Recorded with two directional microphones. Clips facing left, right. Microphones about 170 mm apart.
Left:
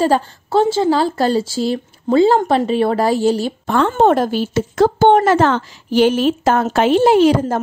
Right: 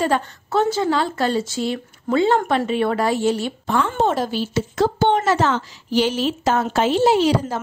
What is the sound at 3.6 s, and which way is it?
A woman's voice, 55° left (ahead or behind).